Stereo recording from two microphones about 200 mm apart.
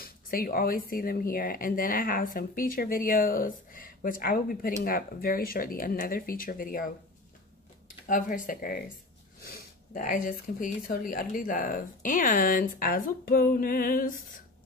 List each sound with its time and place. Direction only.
0.0 s speech: 45° left (ahead or behind)
8.1 s speech: 45° left (ahead or behind)
9.9 s speech: 45° left (ahead or behind)